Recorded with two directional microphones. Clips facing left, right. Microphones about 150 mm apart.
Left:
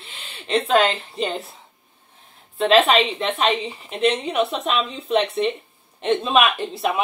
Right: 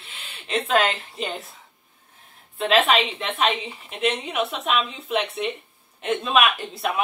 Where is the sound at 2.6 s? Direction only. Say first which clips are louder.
Left 4 dB; 35° left (ahead or behind).